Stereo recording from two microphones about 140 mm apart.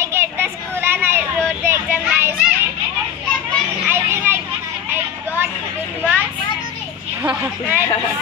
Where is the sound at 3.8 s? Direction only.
15° right (ahead or behind).